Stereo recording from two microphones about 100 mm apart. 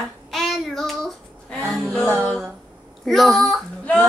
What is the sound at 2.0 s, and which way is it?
Music, 25° right (ahead or behind).